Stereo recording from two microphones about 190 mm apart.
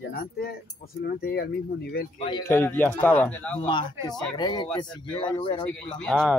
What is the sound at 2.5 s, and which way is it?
Speech, 10° left (ahead or behind).